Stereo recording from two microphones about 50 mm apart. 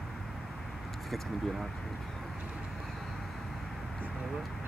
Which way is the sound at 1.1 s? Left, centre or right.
Centre.